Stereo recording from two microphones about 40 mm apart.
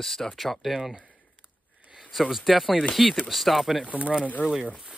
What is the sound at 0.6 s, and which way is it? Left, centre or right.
Speech, centre.